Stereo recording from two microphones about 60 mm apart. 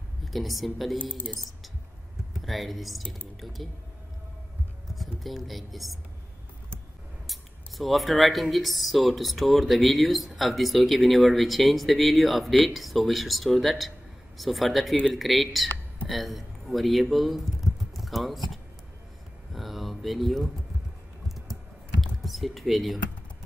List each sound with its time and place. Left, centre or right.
0.2 s speech: centre
1.0 s speech: centre
2.4 s speech: centre
4.9 s speech: centre
7.2 s a man's voice: centre
19.5 s a sound: centre
22.0 s typing: centre